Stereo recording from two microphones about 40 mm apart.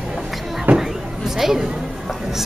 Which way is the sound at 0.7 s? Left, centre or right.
Right.